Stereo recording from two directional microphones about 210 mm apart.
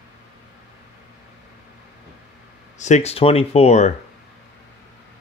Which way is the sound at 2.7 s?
35° left (ahead or behind).